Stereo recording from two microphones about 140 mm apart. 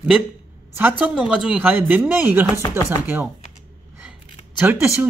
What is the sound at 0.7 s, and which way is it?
Speech, 10° right (ahead or behind).